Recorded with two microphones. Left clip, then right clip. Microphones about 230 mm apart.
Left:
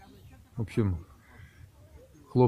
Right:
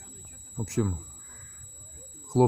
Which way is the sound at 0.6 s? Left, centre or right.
Centre.